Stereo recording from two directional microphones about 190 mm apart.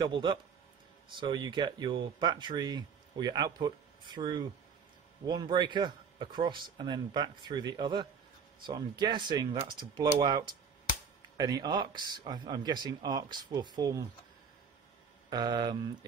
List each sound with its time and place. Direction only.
0.0 s speech: 25° right (ahead or behind)
15.2 s speech: 20° right (ahead or behind)